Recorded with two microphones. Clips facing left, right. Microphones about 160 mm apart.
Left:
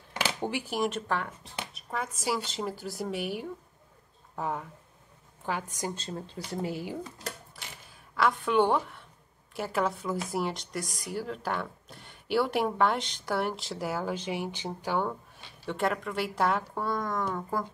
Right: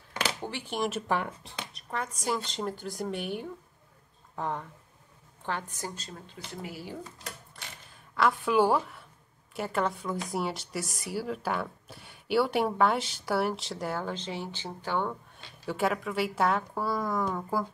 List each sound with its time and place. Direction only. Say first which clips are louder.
0.4 s speech: left 2 dB; 10° left (ahead or behind)
1.0 s speech: right 2 dB; 15° right (ahead or behind)
1.7 s a woman's voice: even; 5° left (ahead or behind)
5.9 s speech: left 6 dB; 35° left (ahead or behind)
8.2 s a woman's voice: right 1 dB; 5° right (ahead or behind)
15.6 s a woman's voice: right 1 dB; 5° right (ahead or behind)